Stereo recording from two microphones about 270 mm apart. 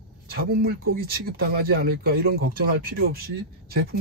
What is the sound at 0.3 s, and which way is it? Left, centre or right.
Speech, right.